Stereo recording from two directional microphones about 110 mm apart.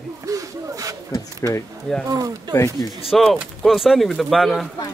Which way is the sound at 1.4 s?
25° left (ahead or behind).